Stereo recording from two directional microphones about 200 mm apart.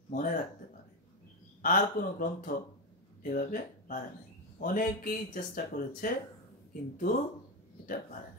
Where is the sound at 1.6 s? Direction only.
40° left (ahead or behind).